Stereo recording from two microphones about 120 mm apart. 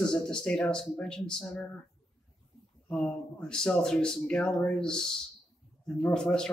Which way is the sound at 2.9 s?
5° left (ahead or behind).